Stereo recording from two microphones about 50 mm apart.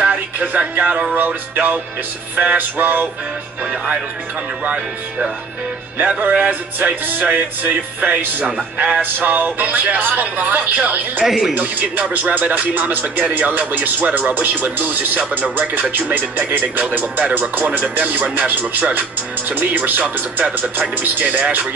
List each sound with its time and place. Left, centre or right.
0.0 s music: right
1.1 s speech: right
5.9 s speech: right
9.0 s speech: right
11.2 s speech: centre
11.5 s speech: right